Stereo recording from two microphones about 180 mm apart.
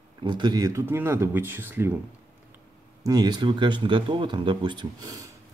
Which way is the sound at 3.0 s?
20° right (ahead or behind).